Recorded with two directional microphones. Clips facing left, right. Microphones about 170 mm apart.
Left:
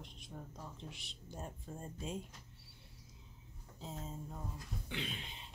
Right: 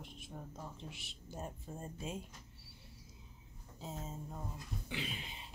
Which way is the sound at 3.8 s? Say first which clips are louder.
Right 1 dB; 5° right (ahead or behind).